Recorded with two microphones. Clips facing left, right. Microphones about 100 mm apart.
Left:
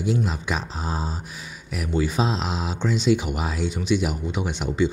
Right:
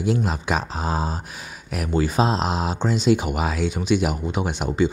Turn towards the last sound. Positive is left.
turn(degrees=-50)  # may be behind; listen again after turning